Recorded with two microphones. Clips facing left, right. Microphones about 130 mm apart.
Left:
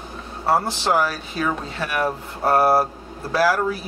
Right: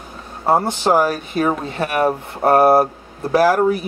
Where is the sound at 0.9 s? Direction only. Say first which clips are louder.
Right 5 dB; 50° right (ahead or behind).